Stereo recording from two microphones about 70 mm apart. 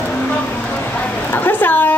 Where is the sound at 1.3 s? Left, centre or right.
Left.